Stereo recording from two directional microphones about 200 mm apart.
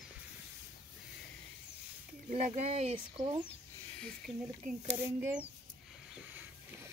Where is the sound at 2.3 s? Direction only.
35° right (ahead or behind).